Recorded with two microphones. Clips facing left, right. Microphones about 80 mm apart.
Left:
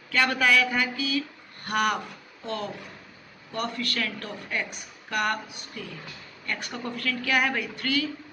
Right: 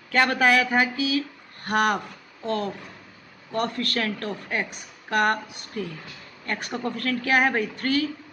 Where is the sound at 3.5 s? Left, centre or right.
Right.